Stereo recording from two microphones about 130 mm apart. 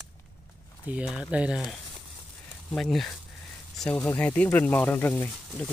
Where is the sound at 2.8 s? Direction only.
Centre (ahead or behind).